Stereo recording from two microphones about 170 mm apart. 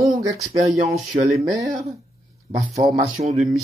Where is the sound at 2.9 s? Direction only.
40° right (ahead or behind).